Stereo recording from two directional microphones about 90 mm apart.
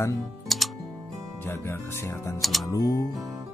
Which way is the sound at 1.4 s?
30° left (ahead or behind).